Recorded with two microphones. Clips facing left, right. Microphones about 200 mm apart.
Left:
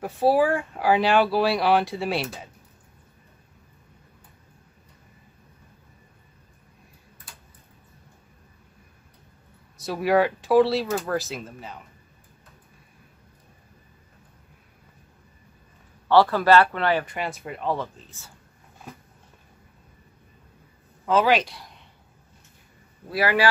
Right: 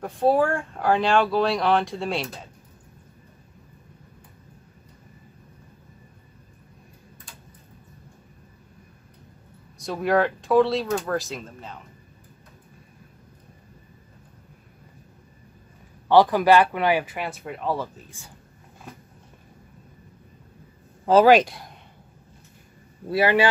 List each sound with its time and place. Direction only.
0.0 s speech: 5° left (ahead or behind)
9.8 s speech: 5° left (ahead or behind)
16.1 s speech: 15° right (ahead or behind)
21.0 s speech: 40° right (ahead or behind)
23.0 s speech: 25° right (ahead or behind)